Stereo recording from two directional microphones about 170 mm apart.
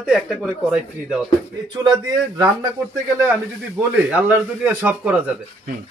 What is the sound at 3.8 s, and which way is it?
Speech, 5° right (ahead or behind).